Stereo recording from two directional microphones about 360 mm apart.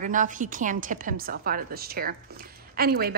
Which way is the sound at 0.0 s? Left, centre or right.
Right.